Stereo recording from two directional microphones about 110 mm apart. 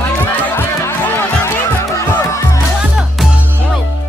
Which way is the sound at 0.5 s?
20° left (ahead or behind).